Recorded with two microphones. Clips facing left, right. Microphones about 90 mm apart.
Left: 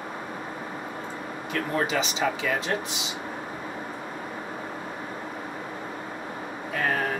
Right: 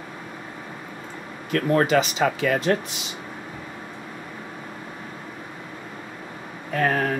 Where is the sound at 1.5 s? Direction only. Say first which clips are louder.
Right 7 dB; 55° right (ahead or behind).